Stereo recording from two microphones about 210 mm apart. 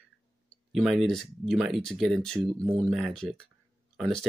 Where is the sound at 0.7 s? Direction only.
Centre (ahead or behind).